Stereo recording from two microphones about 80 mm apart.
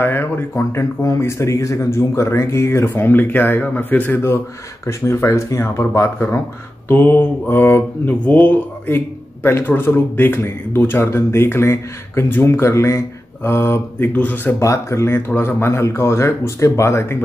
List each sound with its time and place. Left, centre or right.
0.0 s speech: left
14.6 s speech: left